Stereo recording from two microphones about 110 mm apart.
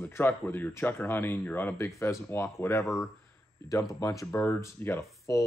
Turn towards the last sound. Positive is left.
turn(degrees=30)  # may be behind; listen again after turning